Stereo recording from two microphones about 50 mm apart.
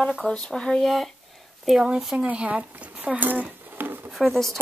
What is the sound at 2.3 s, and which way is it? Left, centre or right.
Speech, right.